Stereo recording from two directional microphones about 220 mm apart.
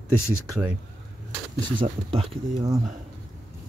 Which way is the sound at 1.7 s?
25° right (ahead or behind).